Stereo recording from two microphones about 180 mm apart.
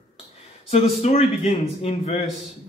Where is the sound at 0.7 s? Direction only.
35° left (ahead or behind).